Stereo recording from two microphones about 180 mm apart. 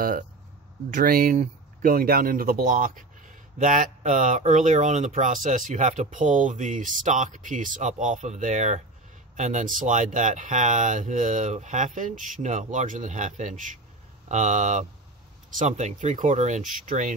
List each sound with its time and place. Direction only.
0.8 s speech: 50° right (ahead or behind)